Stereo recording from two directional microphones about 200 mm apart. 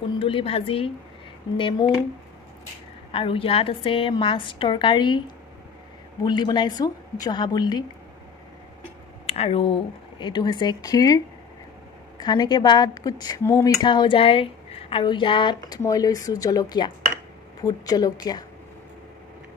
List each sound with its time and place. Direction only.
0.2 s speech: 25° left (ahead or behind)
3.1 s speech: 25° left (ahead or behind)
6.2 s speech: 20° left (ahead or behind)
9.2 s speech: 30° left (ahead or behind); by 13.7 s 15° left (ahead or behind)
13.8 s speech: 25° left (ahead or behind)